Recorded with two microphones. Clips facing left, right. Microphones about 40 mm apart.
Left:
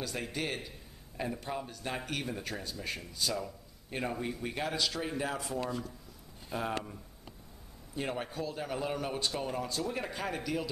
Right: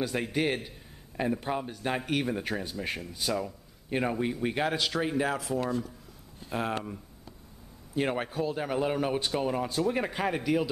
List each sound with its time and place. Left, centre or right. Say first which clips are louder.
0.0 s a man's voice: right 8 dB; right
5.3 s speech: right 5 dB; centre
6.5 s a man's voice: right 4 dB; right
8.1 s a man's voice: right 6 dB; right